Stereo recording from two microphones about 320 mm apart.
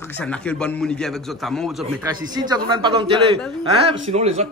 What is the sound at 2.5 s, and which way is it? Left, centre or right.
Speech, centre.